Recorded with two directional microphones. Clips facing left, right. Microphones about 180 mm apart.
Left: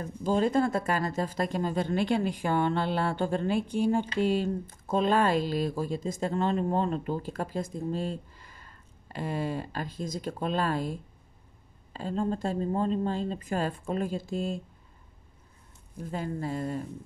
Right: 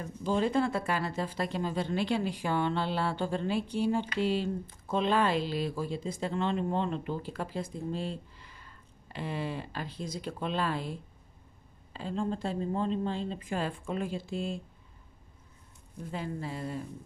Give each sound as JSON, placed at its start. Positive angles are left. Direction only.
{"t": 0.0, "sound": "speech", "side_deg": 40}
{"t": 16.1, "sound": "speech", "side_deg": 45}